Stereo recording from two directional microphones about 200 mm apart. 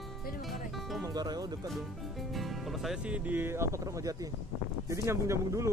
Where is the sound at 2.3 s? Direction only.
Centre (ahead or behind).